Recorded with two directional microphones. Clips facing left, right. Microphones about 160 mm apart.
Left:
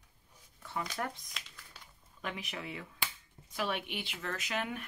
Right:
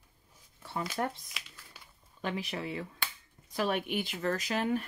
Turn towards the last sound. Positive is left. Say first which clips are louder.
# right 6 dB
turn(degrees=-35)  # may be behind; listen again after turning